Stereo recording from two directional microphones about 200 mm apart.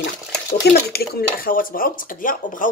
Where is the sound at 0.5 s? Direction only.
50° left (ahead or behind).